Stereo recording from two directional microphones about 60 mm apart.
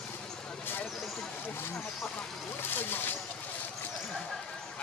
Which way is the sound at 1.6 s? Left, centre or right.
Left.